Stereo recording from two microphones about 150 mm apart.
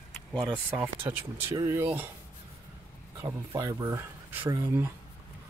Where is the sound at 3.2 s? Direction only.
20° right (ahead or behind).